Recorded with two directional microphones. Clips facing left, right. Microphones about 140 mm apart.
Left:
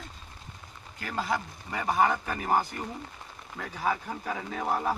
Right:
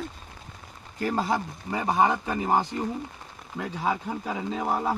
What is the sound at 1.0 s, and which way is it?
A man's voice, 35° right (ahead or behind).